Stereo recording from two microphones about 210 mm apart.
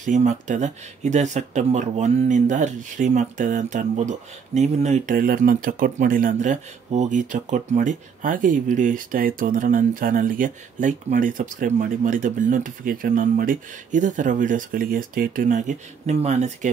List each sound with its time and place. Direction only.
0.0 s speech: 35° right (ahead or behind)